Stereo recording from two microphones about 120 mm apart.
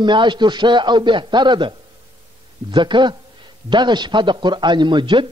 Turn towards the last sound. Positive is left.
turn(degrees=-45)  # may be behind; listen again after turning